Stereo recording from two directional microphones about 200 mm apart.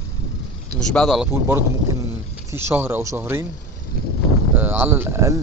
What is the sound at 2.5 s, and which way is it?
Speech, 10° right (ahead or behind).